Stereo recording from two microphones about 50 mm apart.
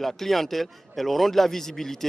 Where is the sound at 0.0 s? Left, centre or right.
Centre.